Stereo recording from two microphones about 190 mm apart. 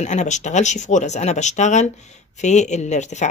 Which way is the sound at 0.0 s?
40° left (ahead or behind).